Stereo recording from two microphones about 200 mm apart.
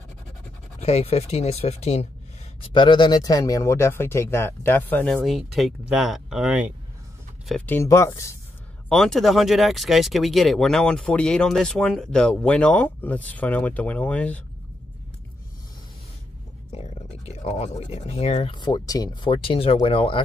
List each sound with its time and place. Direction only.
0.7 s speech: 30° left (ahead or behind); by 6.7 s 5° right (ahead or behind)
7.4 s speech: 5° left (ahead or behind)
8.8 s speech: centre (ahead or behind)
16.7 s speech: 35° left (ahead or behind)